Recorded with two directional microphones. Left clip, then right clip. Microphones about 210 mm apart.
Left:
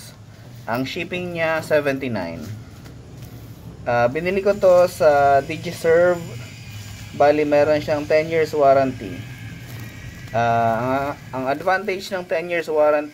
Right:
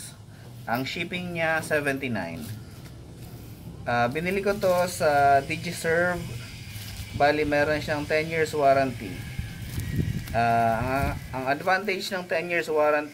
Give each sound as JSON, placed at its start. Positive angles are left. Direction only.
{"t": 0.7, "sound": "speech", "side_deg": 25}
{"t": 3.8, "sound": "speech", "side_deg": 30}
{"t": 7.2, "sound": "speech", "side_deg": 25}
{"t": 10.3, "sound": "speech", "side_deg": 25}